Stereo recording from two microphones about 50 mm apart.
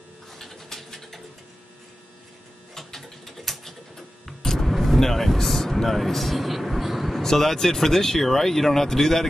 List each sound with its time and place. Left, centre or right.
0.4 s a sound: centre
2.7 s typing: centre
4.3 s speech: centre